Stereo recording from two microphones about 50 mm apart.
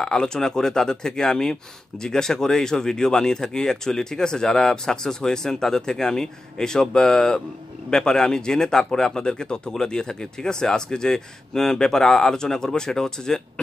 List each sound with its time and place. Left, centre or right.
0.0 s speech: centre